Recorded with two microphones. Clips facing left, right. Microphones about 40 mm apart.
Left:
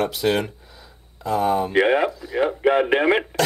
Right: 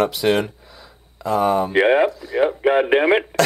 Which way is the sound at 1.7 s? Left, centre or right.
Centre.